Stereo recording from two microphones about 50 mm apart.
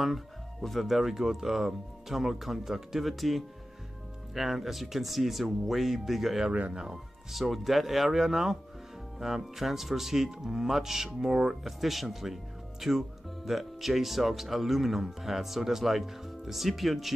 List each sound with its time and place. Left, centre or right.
0.0 s speech: centre
6.7 s speech: centre
7.3 s speech: centre